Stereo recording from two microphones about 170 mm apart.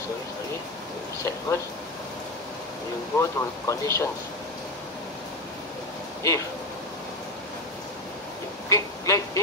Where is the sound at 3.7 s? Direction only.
15° left (ahead or behind).